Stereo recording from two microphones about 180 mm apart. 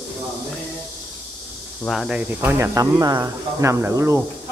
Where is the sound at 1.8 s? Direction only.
Centre (ahead or behind); by 4.2 s 15° right (ahead or behind).